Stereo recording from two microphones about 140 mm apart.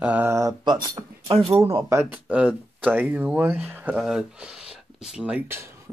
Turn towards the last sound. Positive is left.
turn(degrees=-15)  # may be behind; listen again after turning